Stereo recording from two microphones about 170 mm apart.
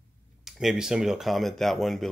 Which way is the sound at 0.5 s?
Centre (ahead or behind).